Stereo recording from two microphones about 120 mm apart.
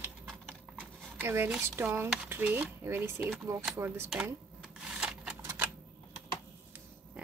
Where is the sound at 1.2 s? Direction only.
20° right (ahead or behind).